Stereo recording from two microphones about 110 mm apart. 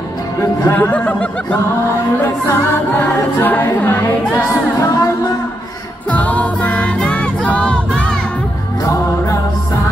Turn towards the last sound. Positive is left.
turn(degrees=10)  # may be behind; listen again after turning